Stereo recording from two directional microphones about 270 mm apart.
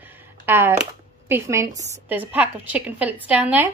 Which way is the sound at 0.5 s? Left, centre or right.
Centre.